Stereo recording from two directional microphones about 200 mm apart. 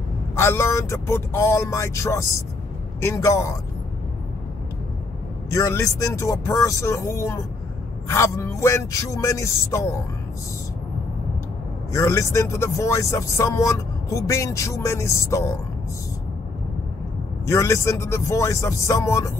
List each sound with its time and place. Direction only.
0.4 s speech: 15° left (ahead or behind)
5.5 s speech: 15° left (ahead or behind)
11.9 s speech: 15° left (ahead or behind)
17.5 s speech: 15° left (ahead or behind)